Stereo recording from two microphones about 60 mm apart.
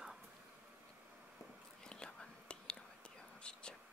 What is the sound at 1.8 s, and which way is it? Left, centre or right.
Whispering, centre.